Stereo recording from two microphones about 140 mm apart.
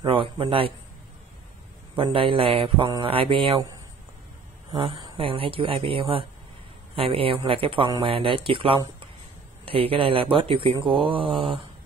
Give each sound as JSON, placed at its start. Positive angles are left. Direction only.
{"t": 0.0, "sound": "a man's voice", "side_deg": -35}
{"t": 2.0, "sound": "speech", "side_deg": -40}
{"t": 4.6, "sound": "speech", "side_deg": -40}